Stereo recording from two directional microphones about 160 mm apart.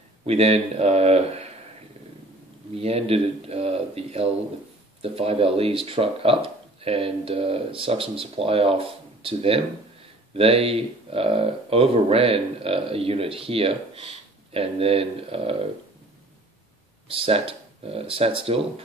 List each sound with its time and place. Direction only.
0.3 s speech: 40° right (ahead or behind)
2.8 s speech: 40° right (ahead or behind)
17.1 s speech: 35° right (ahead or behind)